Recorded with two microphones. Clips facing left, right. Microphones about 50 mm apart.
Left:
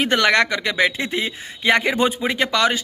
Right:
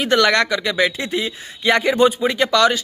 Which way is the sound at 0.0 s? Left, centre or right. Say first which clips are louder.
Right 1 dB; left.